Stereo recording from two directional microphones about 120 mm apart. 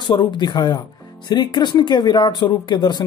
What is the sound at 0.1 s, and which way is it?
Speech, 40° left (ahead or behind).